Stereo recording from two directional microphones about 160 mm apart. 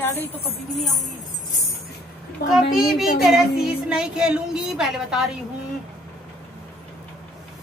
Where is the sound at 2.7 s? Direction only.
Centre (ahead or behind).